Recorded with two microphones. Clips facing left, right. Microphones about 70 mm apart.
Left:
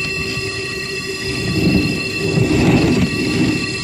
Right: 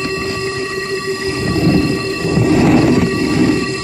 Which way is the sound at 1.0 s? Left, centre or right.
Right.